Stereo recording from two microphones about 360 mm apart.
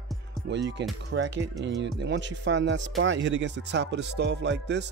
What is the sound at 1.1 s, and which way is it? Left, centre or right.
Speech, right.